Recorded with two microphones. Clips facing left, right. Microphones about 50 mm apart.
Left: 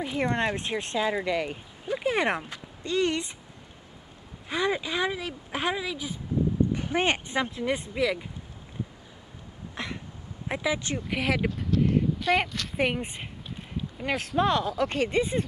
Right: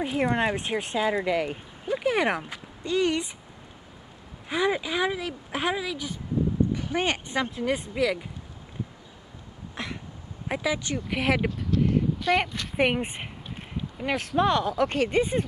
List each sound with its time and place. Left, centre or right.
0.0 s speech: centre
4.5 s speech: centre
6.7 s speech: left
7.5 s speech: centre
9.8 s a sound: centre
10.5 s speech: centre
11.8 s a sound: centre
12.5 s speech: right
13.9 s speech: centre